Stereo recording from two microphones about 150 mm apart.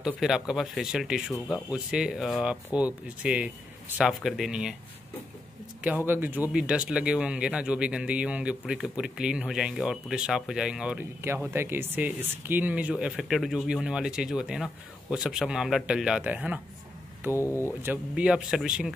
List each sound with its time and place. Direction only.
0.0 s speech: 5° right (ahead or behind)
5.8 s speech: 10° right (ahead or behind)
17.4 s speech: 15° left (ahead or behind)
17.8 s speech: 10° right (ahead or behind)